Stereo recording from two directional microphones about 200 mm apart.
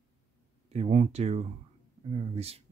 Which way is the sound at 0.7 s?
30° right (ahead or behind).